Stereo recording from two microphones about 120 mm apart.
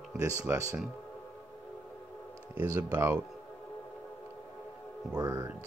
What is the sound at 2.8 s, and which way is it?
Speech, 30° right (ahead or behind).